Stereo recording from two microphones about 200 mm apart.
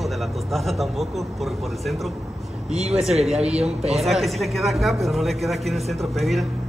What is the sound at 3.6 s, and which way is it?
Speech, 30° right (ahead or behind).